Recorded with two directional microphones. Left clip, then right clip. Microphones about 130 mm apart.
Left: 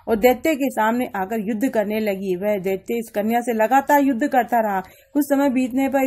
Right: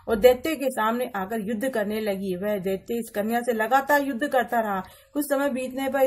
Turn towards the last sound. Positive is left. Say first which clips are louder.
# left 6 dB
turn(degrees=40)  # may be behind; listen again after turning